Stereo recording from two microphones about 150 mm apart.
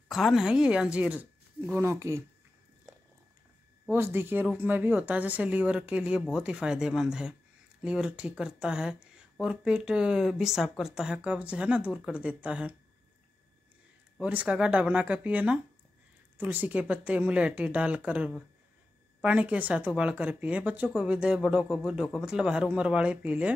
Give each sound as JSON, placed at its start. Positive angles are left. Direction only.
{"t": 0.1, "sound": "speech", "side_deg": 0}
{"t": 3.9, "sound": "speech", "side_deg": -15}
{"t": 14.2, "sound": "speech", "side_deg": -10}